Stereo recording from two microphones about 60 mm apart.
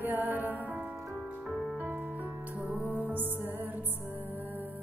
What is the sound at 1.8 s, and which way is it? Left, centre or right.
Music, right.